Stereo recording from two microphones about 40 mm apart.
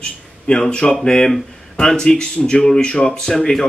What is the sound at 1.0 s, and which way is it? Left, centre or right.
Speech, left.